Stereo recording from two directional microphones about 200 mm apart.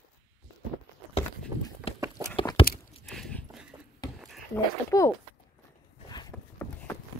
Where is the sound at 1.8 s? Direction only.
5° right (ahead or behind).